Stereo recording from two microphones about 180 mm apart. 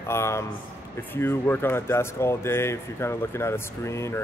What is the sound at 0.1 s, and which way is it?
Speech, 15° left (ahead or behind).